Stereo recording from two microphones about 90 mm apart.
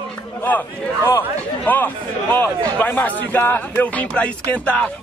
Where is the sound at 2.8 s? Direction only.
20° left (ahead or behind).